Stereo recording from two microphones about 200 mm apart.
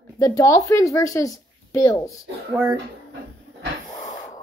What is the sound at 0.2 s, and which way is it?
Speech, 20° left (ahead or behind).